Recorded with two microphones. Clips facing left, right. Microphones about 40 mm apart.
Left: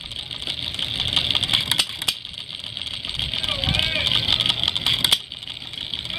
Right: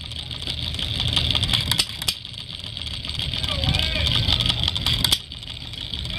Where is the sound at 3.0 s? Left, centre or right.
Centre.